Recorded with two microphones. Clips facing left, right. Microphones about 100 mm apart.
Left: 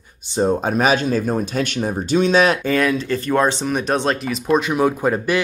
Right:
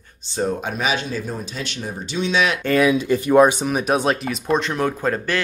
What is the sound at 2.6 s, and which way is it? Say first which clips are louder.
Speech: right 2 dB; 5° right (ahead or behind).